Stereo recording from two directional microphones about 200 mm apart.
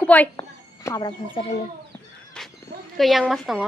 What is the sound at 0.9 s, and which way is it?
Speech, 20° left (ahead or behind).